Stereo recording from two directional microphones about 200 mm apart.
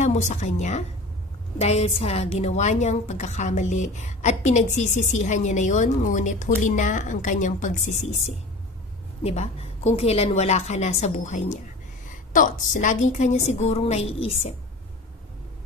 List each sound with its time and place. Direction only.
0.0 s a woman's voice: 35° left (ahead or behind)
9.2 s a woman's voice: 30° left (ahead or behind)